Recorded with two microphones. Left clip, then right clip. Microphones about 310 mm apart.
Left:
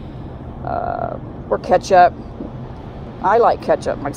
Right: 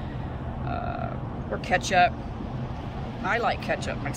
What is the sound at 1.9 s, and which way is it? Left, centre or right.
Speech, left.